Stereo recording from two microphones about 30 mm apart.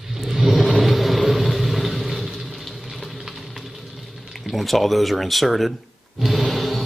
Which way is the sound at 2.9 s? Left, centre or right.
Centre.